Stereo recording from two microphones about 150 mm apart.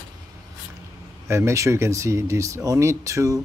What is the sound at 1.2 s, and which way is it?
Speech, 20° right (ahead or behind).